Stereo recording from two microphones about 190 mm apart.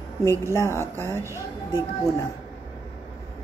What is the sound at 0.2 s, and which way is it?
Speech, 15° left (ahead or behind).